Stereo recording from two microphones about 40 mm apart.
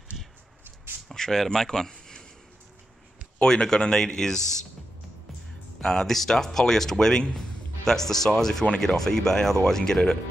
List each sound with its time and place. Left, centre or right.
1.1 s a sound: centre
1.4 s speech: centre
3.4 s speech: centre
5.8 s speech: centre